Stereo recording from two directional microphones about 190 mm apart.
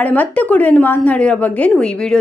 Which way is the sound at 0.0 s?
10° left (ahead or behind).